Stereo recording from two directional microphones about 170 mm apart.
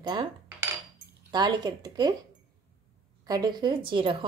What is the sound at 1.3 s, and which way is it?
Speech, 25° right (ahead or behind).